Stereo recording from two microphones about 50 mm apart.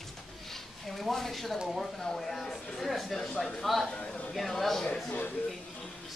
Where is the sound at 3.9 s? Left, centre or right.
Centre.